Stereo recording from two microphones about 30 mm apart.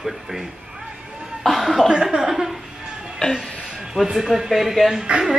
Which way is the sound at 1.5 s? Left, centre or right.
Centre.